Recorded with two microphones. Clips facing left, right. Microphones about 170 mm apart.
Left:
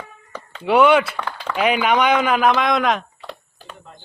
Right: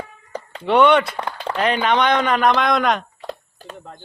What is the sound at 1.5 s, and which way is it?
Speech, 10° left (ahead or behind).